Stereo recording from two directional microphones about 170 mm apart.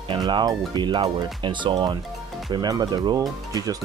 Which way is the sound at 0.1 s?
25° right (ahead or behind).